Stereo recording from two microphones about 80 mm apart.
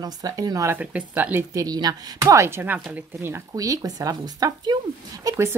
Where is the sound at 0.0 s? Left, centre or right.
Right.